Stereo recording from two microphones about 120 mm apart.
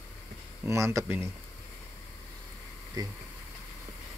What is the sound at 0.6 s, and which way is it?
Speech, 25° right (ahead or behind).